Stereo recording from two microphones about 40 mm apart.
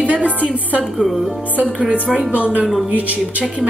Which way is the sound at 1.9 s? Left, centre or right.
Right.